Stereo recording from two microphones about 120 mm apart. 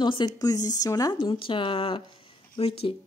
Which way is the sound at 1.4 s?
45° left (ahead or behind).